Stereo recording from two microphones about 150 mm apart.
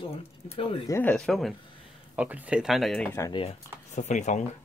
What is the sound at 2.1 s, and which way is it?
Speech, 10° right (ahead or behind).